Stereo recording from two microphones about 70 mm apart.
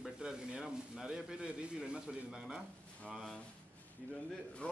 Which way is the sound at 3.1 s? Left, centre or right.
Centre.